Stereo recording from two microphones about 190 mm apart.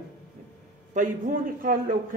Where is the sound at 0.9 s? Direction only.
45° right (ahead or behind).